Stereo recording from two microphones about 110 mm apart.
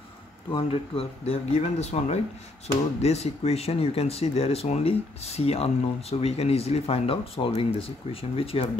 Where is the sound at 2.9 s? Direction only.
75° left (ahead or behind).